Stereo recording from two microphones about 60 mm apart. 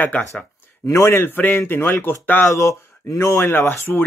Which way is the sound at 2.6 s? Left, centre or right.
Left.